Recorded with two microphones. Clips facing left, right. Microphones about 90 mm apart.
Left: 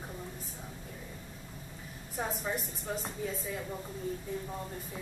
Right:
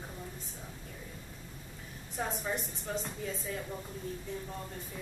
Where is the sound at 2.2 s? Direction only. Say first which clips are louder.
Even; 5° left (ahead or behind).